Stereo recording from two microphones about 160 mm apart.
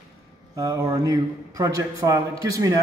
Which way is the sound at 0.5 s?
20° right (ahead or behind).